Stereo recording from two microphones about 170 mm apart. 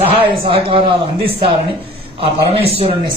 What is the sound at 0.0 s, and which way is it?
Speech, 35° right (ahead or behind).